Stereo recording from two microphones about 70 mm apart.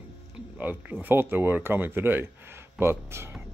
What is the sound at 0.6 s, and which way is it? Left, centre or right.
Speech, right.